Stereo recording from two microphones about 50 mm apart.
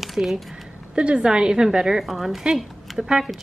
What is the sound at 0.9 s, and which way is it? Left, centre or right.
Speech, centre.